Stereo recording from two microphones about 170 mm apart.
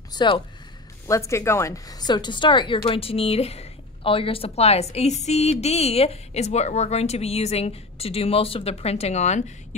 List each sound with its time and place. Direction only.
0.1 s a woman's voice: 25° left (ahead or behind); by 9.8 s 40° left (ahead or behind)